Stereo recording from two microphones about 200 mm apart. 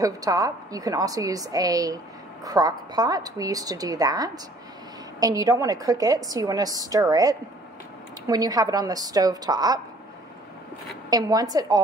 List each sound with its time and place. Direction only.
0.0 s a woman's voice: 20° right (ahead or behind)
11.1 s a woman's voice: 20° right (ahead or behind)